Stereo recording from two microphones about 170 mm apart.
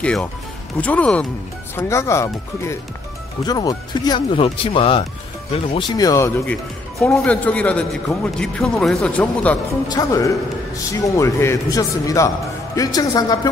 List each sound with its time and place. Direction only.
0.0 s speech: 5° left (ahead or behind)
9.8 s speech: 20° left (ahead or behind)